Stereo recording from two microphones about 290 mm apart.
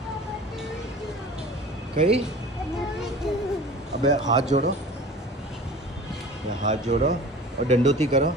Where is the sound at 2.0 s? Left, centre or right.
Right.